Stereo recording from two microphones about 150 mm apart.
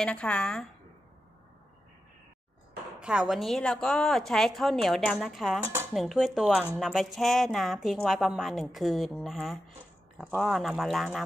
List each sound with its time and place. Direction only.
0.0 s speech: 5° left (ahead or behind)
3.0 s speech: 5° right (ahead or behind)
5.6 s speech: 15° right (ahead or behind)
5.9 s speech: centre (ahead or behind)